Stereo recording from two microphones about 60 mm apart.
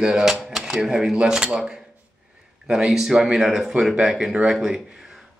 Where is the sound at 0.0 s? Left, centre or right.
Centre.